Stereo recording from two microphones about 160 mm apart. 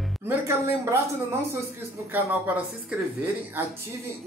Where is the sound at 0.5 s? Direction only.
15° right (ahead or behind).